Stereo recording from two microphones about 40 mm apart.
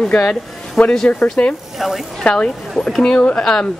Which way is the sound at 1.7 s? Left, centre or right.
Centre.